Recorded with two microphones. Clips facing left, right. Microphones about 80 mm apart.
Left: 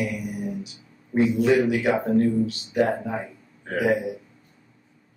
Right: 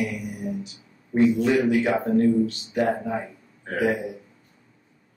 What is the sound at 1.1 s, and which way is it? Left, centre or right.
Speech, centre.